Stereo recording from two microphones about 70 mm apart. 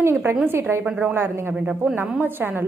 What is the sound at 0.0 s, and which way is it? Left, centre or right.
Speech, right.